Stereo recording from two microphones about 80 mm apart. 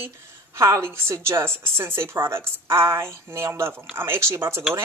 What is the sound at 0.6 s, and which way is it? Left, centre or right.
Speech, right.